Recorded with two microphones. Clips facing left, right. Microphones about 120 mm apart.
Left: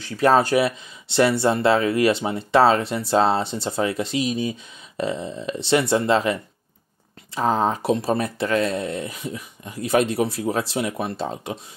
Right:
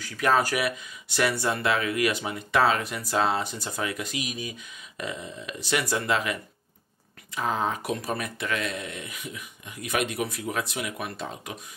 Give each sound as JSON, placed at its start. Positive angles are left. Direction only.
{"t": 0.0, "sound": "speech", "side_deg": 30}